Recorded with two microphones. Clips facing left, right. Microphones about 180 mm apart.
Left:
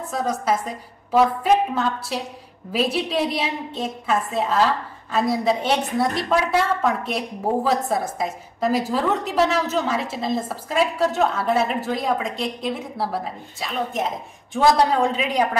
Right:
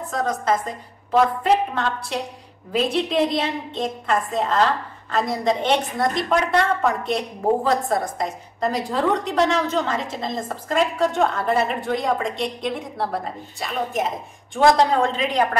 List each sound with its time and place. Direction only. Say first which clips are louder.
0.1 s a woman's voice: right 1 dB; 10° left (ahead or behind)